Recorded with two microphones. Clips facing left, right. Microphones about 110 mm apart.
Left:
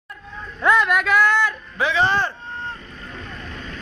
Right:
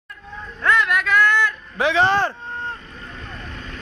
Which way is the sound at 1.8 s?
70° right (ahead or behind).